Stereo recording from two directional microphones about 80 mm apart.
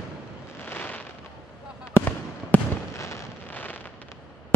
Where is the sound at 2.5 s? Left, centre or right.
Centre.